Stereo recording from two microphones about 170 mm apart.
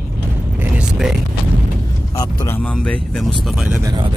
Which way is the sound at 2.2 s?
20° left (ahead or behind).